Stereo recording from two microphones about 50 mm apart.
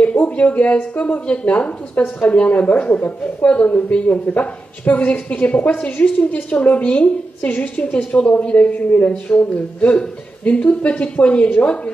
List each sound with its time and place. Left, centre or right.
0.0 s a man's voice: left